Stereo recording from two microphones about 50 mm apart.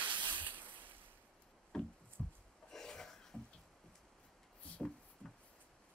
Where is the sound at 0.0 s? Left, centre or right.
Right.